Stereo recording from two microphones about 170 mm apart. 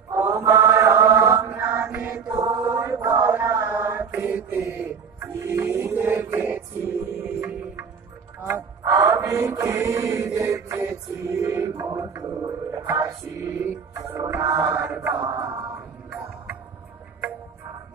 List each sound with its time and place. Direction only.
0.1 s mantra: 15° right (ahead or behind)
7.1 s a sound: 15° right (ahead or behind)
8.5 s mantra: 20° right (ahead or behind)
14.0 s chant: 20° right (ahead or behind)
15.7 s music: 15° right (ahead or behind)